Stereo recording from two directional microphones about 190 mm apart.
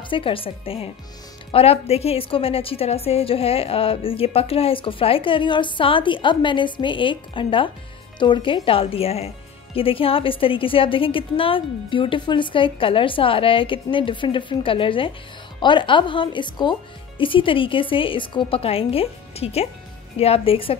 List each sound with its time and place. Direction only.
0.1 s a woman's voice: 30° left (ahead or behind)